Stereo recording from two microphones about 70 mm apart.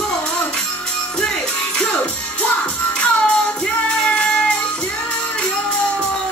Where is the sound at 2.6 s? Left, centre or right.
Centre.